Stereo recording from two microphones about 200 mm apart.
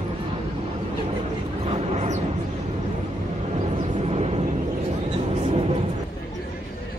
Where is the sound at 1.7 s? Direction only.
30° right (ahead or behind).